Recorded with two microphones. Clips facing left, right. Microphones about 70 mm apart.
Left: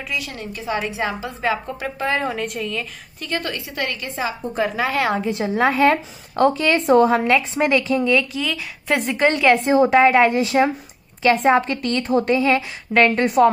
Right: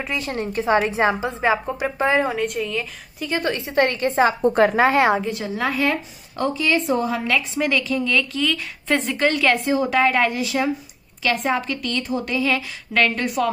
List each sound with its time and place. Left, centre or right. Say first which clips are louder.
0.0 s a woman's voice: right 3 dB; right
2.2 s a woman's voice: right 1 dB; centre
3.3 s a woman's voice: right 3 dB; right
4.4 s a woman's voice: right 6 dB; right
4.7 s a woman's voice: right 5 dB; right
5.3 s speech: left 5 dB; left
6.3 s a woman's voice: left 4 dB; left
7.5 s a woman's voice: left 3 dB; left; by 9.1 s centre
9.1 s a woman's voice: left 5 dB; left